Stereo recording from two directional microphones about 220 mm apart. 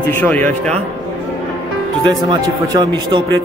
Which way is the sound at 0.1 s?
10° left (ahead or behind).